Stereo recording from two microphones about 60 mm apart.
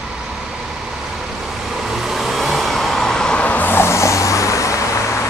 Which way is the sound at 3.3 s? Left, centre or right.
Left.